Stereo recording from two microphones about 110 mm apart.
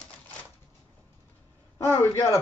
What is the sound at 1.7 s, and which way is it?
Speech, 20° left (ahead or behind).